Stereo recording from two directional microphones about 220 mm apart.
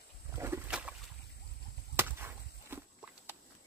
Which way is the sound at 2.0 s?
10° right (ahead or behind).